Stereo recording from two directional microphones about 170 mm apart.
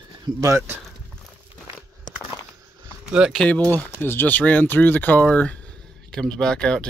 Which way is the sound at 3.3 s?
10° left (ahead or behind).